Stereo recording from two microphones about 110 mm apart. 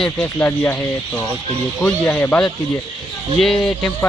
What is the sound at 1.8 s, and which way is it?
Speech, 15° left (ahead or behind).